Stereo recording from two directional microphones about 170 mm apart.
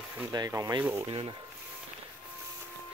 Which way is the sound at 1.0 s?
35° right (ahead or behind).